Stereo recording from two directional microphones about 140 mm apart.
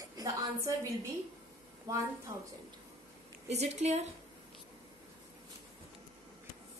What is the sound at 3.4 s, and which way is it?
Speech, 50° right (ahead or behind).